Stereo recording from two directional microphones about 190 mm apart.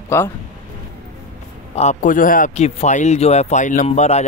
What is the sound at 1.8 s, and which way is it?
Speech, 40° left (ahead or behind).